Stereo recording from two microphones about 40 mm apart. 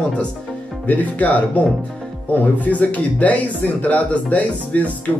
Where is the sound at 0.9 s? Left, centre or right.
Left.